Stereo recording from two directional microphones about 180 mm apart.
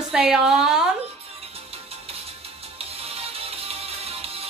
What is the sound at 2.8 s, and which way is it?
Music, 35° right (ahead or behind).